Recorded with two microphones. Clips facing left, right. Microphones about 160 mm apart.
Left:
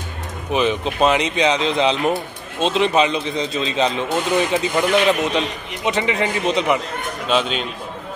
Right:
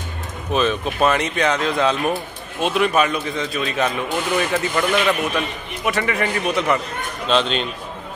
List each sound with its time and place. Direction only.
0.5 s a man's voice: 15° left (ahead or behind)
7.2 s speech: 10° left (ahead or behind)